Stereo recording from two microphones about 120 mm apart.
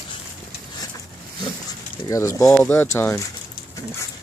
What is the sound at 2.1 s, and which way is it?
Speech, 25° left (ahead or behind).